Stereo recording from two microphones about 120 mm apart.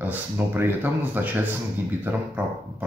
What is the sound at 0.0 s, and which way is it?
Speech, 15° right (ahead or behind).